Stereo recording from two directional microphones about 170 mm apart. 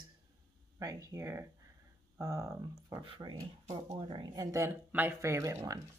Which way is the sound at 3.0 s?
30° right (ahead or behind).